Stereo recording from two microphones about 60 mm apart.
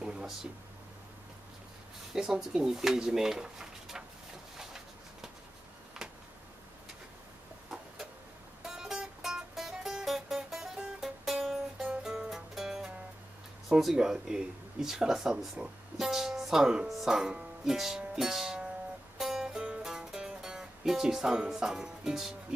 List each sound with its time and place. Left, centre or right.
0.0 s a sound: centre
2.1 s speech: centre
6.0 s a sound: centre
8.6 s music: centre
13.7 s speech: centre
19.1 s music: centre
19.6 s music: centre